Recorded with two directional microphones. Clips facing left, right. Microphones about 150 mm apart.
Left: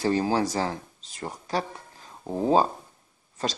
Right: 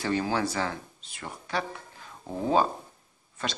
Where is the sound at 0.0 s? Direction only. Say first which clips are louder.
Left 4 dB; 35° left (ahead or behind).